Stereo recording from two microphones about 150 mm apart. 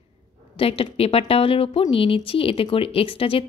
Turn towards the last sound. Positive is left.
turn(degrees=40)  # may be behind; listen again after turning